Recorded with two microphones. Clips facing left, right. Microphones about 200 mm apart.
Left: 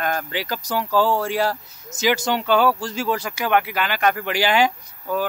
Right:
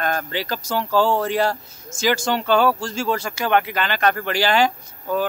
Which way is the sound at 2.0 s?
20° left (ahead or behind).